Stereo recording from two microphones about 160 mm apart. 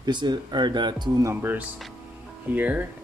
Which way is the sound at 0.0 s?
25° right (ahead or behind).